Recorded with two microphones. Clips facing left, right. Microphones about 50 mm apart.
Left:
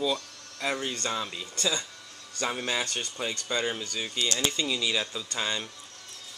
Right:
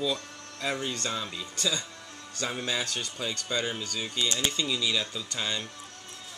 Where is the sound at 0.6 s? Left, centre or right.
Left.